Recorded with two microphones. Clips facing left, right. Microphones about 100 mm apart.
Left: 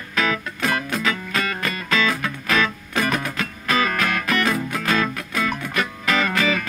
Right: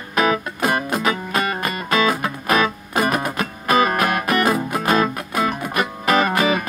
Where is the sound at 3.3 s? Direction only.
15° right (ahead or behind).